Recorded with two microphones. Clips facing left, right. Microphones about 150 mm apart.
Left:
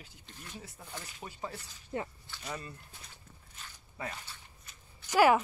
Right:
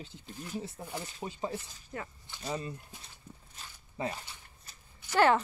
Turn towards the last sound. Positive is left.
turn(degrees=10)  # may be behind; listen again after turning